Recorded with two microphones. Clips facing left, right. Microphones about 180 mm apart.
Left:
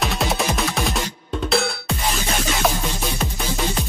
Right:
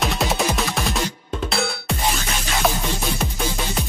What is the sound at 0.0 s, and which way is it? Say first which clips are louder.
Music: right 1 dB; centre (ahead or behind).